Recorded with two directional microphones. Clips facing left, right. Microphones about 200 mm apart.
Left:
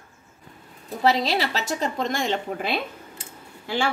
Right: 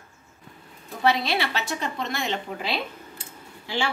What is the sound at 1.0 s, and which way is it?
Speech, 35° left (ahead or behind).